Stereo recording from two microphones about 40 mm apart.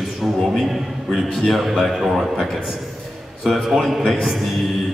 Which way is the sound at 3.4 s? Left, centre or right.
Centre.